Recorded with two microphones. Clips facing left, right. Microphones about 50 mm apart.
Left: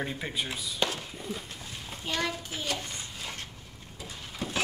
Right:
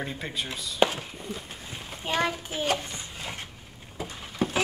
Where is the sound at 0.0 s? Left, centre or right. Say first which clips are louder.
Even; centre.